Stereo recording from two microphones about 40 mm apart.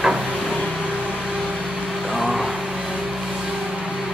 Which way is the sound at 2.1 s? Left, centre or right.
Centre.